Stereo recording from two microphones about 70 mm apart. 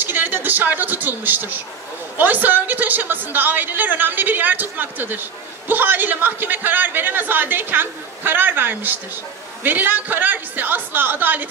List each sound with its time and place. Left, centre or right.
0.0 s a woman's voice: right